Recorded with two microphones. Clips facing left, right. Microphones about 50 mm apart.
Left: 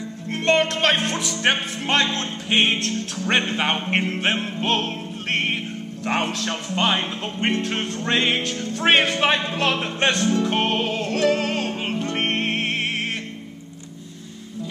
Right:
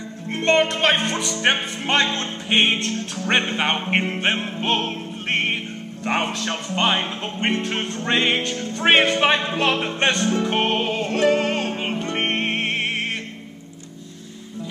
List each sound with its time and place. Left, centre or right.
0.3 s music: centre